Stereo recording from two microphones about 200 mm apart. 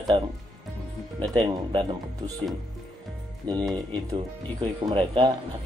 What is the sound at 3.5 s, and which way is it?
Speech, 20° right (ahead or behind).